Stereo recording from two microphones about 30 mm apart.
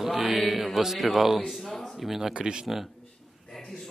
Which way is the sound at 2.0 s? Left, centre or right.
Centre.